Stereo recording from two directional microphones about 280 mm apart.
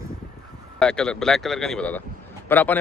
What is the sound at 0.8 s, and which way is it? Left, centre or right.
A man's voice, centre.